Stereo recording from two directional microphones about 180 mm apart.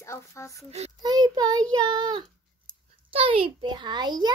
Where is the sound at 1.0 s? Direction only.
20° right (ahead or behind).